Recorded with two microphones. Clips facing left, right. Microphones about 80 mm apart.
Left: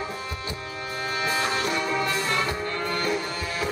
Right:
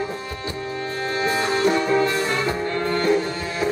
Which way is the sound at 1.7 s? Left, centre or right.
Right.